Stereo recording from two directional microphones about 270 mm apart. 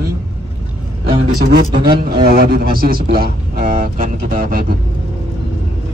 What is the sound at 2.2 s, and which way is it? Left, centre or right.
A man's voice, right.